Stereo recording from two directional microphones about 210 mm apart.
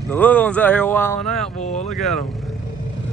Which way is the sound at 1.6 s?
35° left (ahead or behind).